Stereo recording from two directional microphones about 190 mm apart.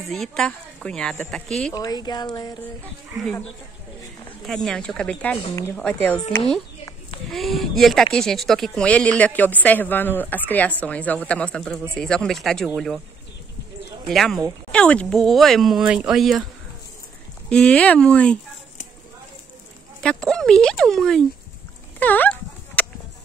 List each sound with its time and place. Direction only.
0.1 s speech: 5° left (ahead or behind)
1.7 s speech: 20° left (ahead or behind)
4.5 s speech: 5° left (ahead or behind)
7.2 s speech: centre (ahead or behind)
14.0 s speech: centre (ahead or behind)
17.5 s speech: 5° left (ahead or behind)
20.0 s speech: 5° left (ahead or behind)
22.0 s dog: 10° left (ahead or behind)